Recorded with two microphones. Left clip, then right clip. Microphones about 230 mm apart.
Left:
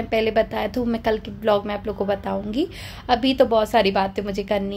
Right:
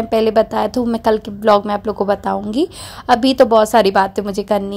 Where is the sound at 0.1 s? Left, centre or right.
Right.